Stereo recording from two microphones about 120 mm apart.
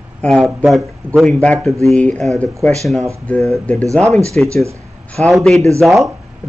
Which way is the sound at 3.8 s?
25° right (ahead or behind).